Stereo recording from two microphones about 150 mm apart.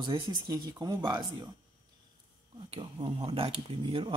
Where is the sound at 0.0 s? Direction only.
30° right (ahead or behind).